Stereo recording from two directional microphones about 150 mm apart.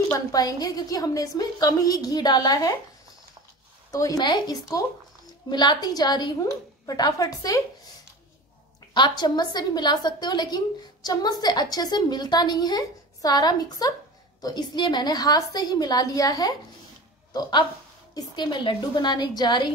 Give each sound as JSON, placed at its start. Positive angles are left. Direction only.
{"t": 0.1, "sound": "a woman's voice", "side_deg": 25}
{"t": 3.9, "sound": "a woman's voice", "side_deg": 25}
{"t": 8.9, "sound": "a woman's voice", "side_deg": 30}